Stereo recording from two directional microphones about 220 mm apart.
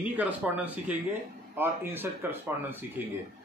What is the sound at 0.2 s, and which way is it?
Speech, 5° right (ahead or behind).